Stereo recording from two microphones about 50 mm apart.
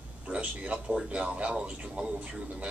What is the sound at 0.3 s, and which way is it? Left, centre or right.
A man's voice, right.